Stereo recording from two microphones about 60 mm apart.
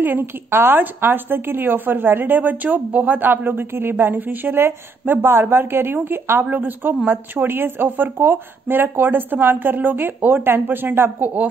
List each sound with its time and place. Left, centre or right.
0.0 s a woman's voice: right